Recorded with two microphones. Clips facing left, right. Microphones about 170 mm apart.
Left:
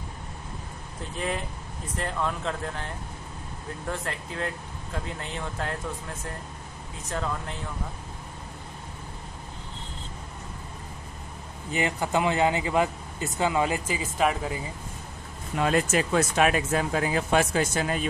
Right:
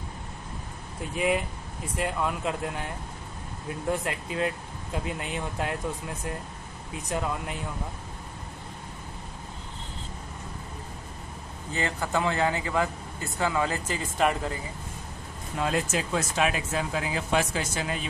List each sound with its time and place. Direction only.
1.1 s speech: 10° right (ahead or behind)
3.9 s speech: 15° right (ahead or behind)
7.1 s speech: 15° right (ahead or behind)
11.7 s speech: 15° left (ahead or behind)
15.6 s speech: 60° left (ahead or behind)